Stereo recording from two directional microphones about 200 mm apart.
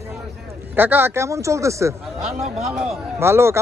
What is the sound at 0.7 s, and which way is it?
Speech, 10° right (ahead or behind).